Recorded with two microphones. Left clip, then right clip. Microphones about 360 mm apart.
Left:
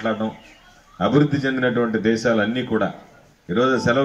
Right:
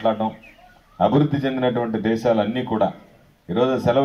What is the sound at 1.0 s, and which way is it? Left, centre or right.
A man's voice, right.